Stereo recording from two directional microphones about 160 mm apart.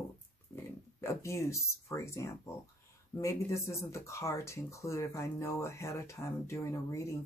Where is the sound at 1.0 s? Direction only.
20° left (ahead or behind).